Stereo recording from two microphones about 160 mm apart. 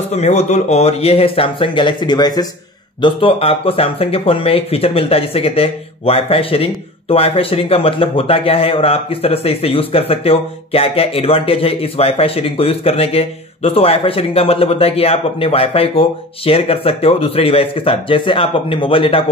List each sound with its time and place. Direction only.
0.1 s speech: 45° left (ahead or behind)